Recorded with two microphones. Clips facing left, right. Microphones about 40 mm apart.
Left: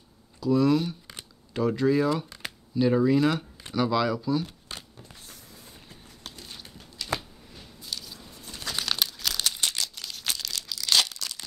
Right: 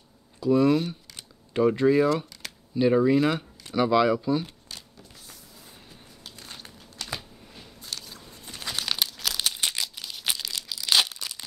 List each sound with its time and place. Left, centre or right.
0.4 s speech: right
8.5 s crumpling: centre
9.6 s a sound: centre
10.5 s tearing: centre